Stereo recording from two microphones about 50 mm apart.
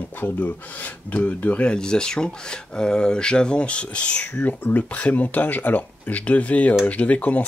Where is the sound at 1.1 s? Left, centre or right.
Left.